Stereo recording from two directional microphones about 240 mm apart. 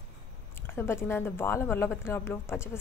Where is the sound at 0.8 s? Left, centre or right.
Centre.